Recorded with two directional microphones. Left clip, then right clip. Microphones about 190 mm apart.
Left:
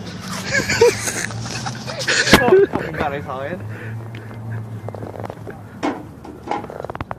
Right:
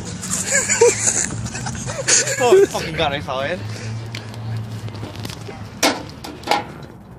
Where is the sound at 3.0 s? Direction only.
75° right (ahead or behind).